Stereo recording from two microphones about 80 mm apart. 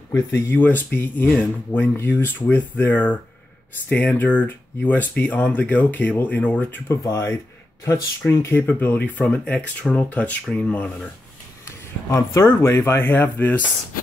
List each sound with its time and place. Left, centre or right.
0.1 s speech: left
6.9 s speech: left
8.7 s speech: left
11.6 s speech: left